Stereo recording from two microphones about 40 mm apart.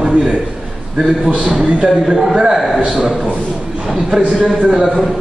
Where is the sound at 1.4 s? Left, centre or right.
Centre.